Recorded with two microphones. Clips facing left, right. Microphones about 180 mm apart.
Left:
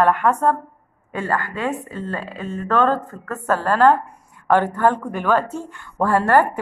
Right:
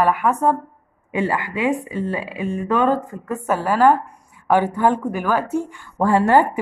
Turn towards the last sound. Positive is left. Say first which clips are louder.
# right 1 dB
turn(degrees=-15)  # may be behind; listen again after turning